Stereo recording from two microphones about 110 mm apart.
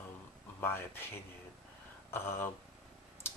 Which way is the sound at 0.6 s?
20° left (ahead or behind).